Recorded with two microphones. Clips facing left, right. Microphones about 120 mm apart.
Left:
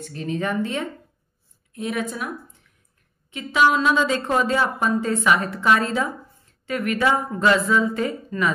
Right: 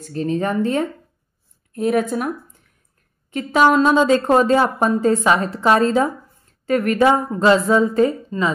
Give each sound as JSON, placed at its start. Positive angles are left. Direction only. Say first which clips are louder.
{"t": 0.0, "sound": "a woman's voice", "louder": "right 5 dB", "side_deg": -40}